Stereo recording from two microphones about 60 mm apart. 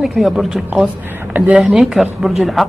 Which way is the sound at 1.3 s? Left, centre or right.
Right.